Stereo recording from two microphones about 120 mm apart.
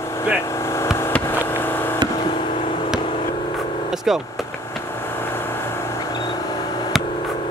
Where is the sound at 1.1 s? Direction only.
20° left (ahead or behind).